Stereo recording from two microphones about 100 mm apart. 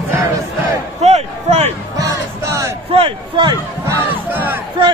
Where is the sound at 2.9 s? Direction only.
60° right (ahead or behind).